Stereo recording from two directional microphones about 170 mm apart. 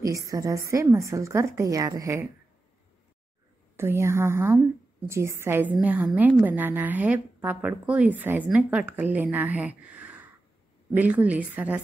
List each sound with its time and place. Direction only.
0.0 s a woman's voice: 20° right (ahead or behind)
3.7 s a woman's voice: 15° right (ahead or behind)